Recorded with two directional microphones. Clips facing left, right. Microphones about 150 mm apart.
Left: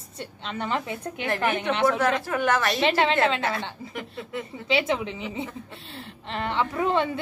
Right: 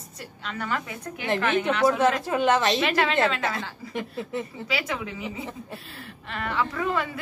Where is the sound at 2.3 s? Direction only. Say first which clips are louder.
Right 2 dB; 20° right (ahead or behind).